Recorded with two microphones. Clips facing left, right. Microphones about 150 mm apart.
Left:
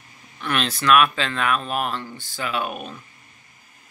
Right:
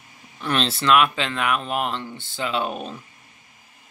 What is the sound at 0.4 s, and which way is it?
Speech, 30° right (ahead or behind).